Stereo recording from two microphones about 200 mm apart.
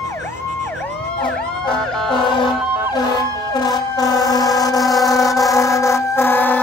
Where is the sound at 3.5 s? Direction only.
20° left (ahead or behind).